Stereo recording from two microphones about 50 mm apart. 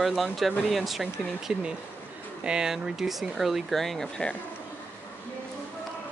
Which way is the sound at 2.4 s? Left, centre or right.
Centre.